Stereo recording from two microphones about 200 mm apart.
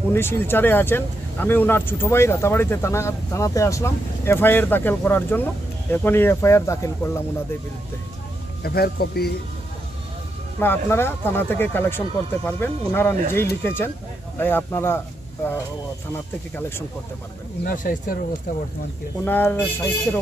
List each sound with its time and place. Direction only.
0.1 s speech: 10° left (ahead or behind)
8.6 s speech: 50° left (ahead or behind)
10.6 s speech: 10° left (ahead or behind)
16.5 s speech: 10° left (ahead or behind)
17.6 s speech: 40° left (ahead or behind)
19.2 s speech: 10° left (ahead or behind)